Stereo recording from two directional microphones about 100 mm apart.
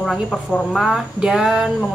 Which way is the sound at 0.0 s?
5° left (ahead or behind).